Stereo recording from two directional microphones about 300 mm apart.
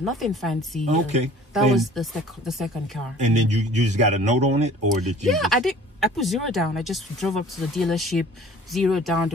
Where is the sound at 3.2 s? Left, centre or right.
Right.